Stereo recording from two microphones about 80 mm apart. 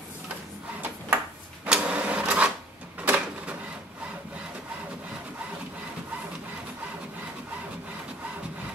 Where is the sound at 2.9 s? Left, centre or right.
Centre.